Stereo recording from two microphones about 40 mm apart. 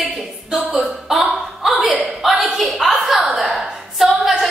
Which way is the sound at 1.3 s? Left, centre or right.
Centre.